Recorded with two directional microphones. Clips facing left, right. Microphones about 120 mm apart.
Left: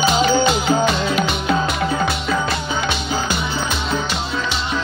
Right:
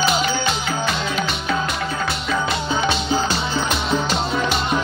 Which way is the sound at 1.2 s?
10° left (ahead or behind).